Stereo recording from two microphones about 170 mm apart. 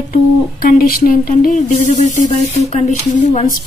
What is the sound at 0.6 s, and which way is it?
A woman's voice, 60° left (ahead or behind).